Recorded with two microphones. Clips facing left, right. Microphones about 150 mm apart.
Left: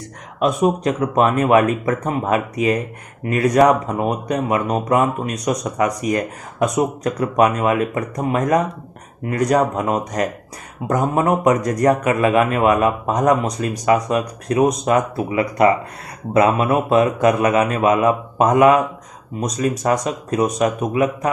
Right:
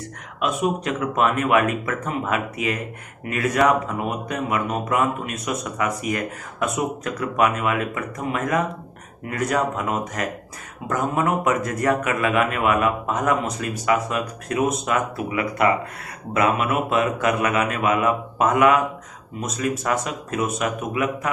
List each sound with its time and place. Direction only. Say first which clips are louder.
0.4 s a man's voice: left 6 dB; 40° left (ahead or behind)